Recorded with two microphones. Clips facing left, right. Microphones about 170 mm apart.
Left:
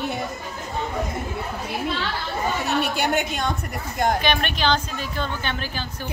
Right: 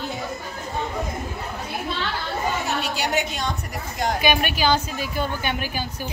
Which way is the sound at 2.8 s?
55° left (ahead or behind).